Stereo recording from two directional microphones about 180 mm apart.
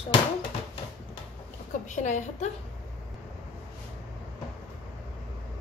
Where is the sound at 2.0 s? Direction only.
40° left (ahead or behind).